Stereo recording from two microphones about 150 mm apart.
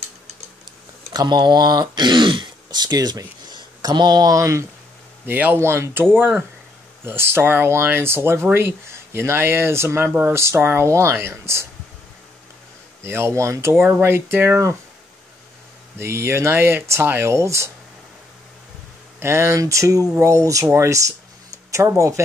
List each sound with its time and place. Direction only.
1.1 s speech: 30° right (ahead or behind)
13.0 s speech: 15° right (ahead or behind)
16.0 s speech: 15° right (ahead or behind)
19.1 s speech: 20° right (ahead or behind)